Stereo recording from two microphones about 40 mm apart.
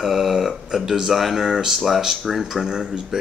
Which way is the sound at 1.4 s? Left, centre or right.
Centre.